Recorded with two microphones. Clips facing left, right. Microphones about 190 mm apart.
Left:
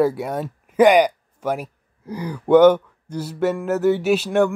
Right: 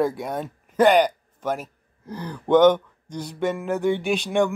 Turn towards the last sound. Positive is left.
turn(degrees=5)  # may be behind; listen again after turning